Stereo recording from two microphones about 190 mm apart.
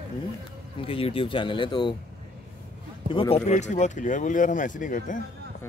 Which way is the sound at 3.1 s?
30° left (ahead or behind).